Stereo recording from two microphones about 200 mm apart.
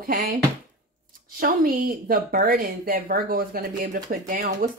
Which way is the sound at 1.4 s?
45° right (ahead or behind).